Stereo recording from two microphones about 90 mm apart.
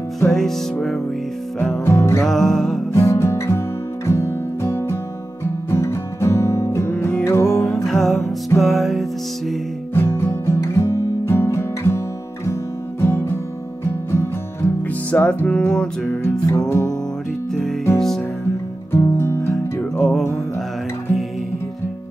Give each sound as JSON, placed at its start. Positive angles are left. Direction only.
{"t": 0.3, "sound": "music", "side_deg": 5}
{"t": 1.9, "sound": "music", "side_deg": 30}
{"t": 2.2, "sound": "music", "side_deg": 5}
{"t": 2.9, "sound": "music", "side_deg": 30}
{"t": 7.6, "sound": "music", "side_deg": 0}
{"t": 9.9, "sound": "music", "side_deg": 25}
{"t": 13.0, "sound": "music", "side_deg": 30}
{"t": 16.1, "sound": "music", "side_deg": 25}
{"t": 17.9, "sound": "music", "side_deg": 5}
{"t": 18.9, "sound": "music", "side_deg": 25}
{"t": 20.0, "sound": "music", "side_deg": 0}